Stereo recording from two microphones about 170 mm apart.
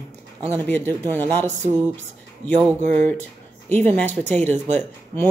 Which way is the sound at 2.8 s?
10° left (ahead or behind).